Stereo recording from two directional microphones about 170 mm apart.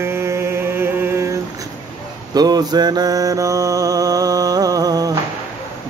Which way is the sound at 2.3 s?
25° right (ahead or behind).